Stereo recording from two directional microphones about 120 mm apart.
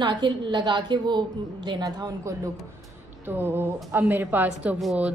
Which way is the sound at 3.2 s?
15° right (ahead or behind).